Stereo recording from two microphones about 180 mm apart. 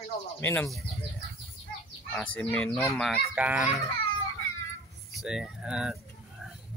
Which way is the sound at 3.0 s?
Centre (ahead or behind).